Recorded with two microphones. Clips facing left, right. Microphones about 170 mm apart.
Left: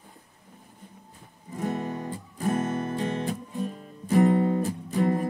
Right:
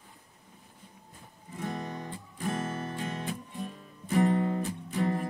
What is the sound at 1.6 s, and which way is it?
Music, 40° left (ahead or behind).